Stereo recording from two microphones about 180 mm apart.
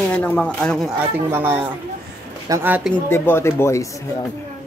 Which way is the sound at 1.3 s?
15° right (ahead or behind).